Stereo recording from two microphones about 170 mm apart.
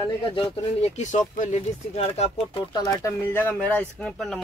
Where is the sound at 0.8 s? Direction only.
45° left (ahead or behind).